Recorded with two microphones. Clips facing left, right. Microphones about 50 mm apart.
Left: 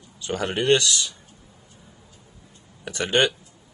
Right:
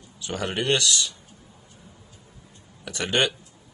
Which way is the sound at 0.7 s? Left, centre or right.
Left.